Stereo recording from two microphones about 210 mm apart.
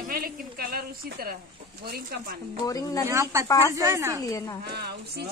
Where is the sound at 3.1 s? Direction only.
15° right (ahead or behind).